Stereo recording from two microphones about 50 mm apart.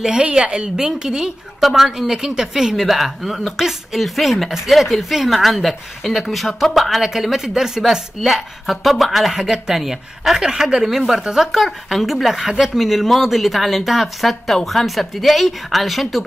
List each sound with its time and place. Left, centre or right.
0.0 s a woman's voice: centre